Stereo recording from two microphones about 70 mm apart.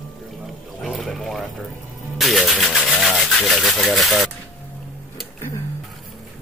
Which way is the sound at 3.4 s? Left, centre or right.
Centre.